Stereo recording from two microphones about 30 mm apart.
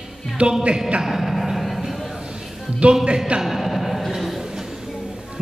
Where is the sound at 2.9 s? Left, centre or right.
Right.